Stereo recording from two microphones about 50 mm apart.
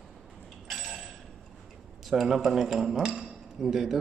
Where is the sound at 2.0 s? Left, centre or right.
Centre.